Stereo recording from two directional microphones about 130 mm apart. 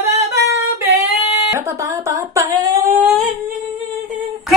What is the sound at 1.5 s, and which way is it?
A woman's voice, 25° right (ahead or behind).